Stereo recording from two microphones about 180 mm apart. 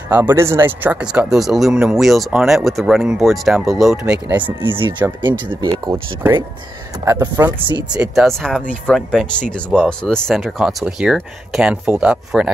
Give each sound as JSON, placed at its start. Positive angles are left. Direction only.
{"t": 0.1, "sound": "speech", "side_deg": -10}
{"t": 4.7, "sound": "speech", "side_deg": -25}
{"t": 7.1, "sound": "speech", "side_deg": -15}
{"t": 7.9, "sound": "speech", "side_deg": -5}